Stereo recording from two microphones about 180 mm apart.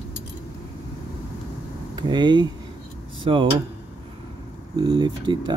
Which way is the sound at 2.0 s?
25° right (ahead or behind).